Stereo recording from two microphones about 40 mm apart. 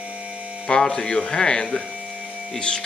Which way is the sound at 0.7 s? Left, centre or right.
Centre.